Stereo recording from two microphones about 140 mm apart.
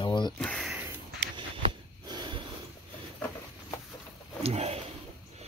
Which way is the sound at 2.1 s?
30° right (ahead or behind).